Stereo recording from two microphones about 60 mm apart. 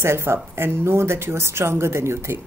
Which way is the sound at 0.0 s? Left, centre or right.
Right.